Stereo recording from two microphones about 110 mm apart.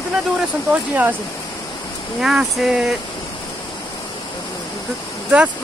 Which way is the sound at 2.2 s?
5° right (ahead or behind).